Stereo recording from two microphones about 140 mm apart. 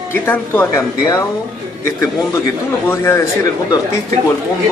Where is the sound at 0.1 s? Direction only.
15° left (ahead or behind).